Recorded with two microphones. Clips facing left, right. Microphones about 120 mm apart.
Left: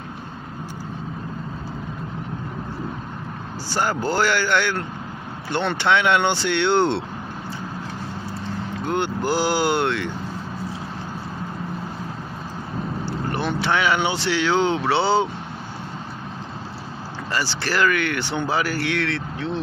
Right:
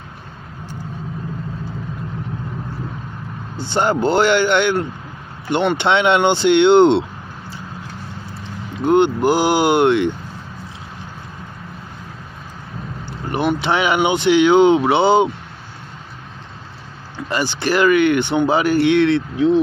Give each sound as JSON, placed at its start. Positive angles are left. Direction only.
{"t": 3.5, "sound": "speech", "side_deg": -20}
{"t": 8.8, "sound": "speech", "side_deg": -20}
{"t": 13.3, "sound": "speech", "side_deg": -15}
{"t": 17.3, "sound": "speech", "side_deg": -20}